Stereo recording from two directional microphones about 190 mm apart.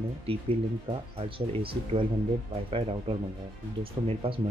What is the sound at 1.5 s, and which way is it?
Speech, 30° right (ahead or behind).